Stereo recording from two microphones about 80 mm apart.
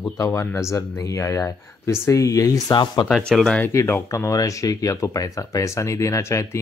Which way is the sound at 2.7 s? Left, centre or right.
Left.